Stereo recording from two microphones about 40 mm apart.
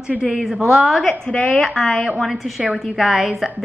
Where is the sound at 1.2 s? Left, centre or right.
Left.